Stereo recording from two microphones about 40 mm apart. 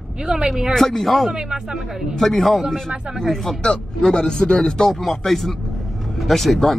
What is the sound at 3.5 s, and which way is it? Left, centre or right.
Speech, left.